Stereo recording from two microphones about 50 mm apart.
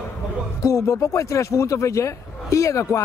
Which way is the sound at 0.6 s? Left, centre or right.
Left.